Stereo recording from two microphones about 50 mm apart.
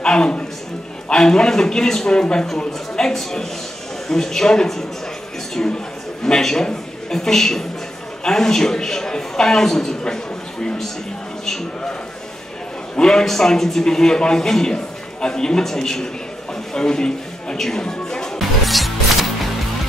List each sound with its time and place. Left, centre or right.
0.0 s a sound: centre
1.0 s a man's voice: centre
12.9 s a man's voice: centre
16.7 s music: centre
18.4 s music: centre